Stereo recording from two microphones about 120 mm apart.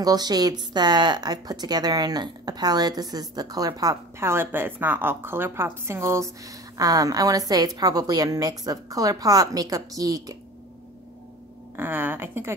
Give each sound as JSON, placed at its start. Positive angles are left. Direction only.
{"t": 0.0, "sound": "speech", "side_deg": -35}
{"t": 11.7, "sound": "a woman's voice", "side_deg": -15}